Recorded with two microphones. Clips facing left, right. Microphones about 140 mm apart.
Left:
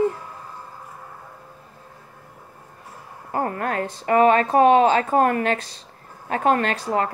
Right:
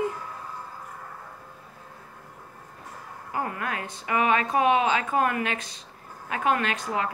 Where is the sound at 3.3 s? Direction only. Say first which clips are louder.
Left 6 dB; 45° left (ahead or behind).